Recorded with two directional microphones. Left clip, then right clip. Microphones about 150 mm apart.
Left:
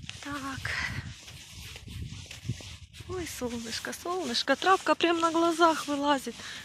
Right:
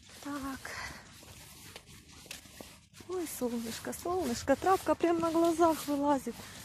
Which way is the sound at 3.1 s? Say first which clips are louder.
Even; centre (ahead or behind).